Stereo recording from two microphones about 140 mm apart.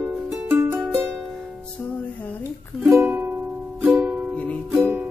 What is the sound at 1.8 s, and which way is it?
Music, 10° left (ahead or behind).